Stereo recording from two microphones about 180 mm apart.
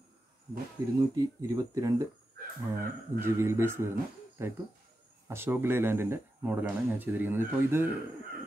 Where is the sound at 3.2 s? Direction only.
15° right (ahead or behind).